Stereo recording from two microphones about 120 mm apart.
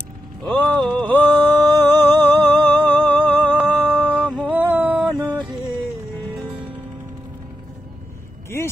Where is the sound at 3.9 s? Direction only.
10° right (ahead or behind).